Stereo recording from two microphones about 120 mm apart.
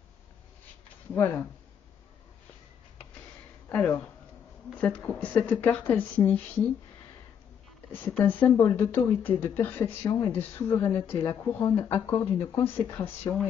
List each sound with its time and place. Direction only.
3.6 s speech: 10° left (ahead or behind)
7.9 s speech: 15° left (ahead or behind)
11.2 s speech: 30° left (ahead or behind)
11.7 s speech: 15° left (ahead or behind)